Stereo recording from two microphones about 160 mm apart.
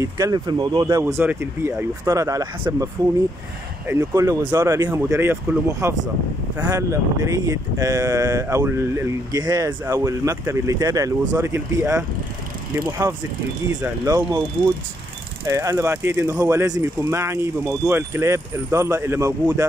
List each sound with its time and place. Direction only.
0.0 s speech: 20° right (ahead or behind)
4.0 s speech: 20° right (ahead or behind)
15.4 s speech: 20° right (ahead or behind)